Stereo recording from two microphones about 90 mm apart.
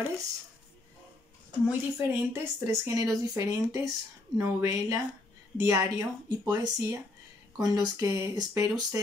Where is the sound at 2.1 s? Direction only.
30° right (ahead or behind).